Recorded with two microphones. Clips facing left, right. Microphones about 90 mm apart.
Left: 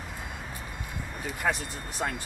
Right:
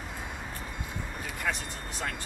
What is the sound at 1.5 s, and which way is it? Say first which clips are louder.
Speech: left 4 dB; 25° left (ahead or behind).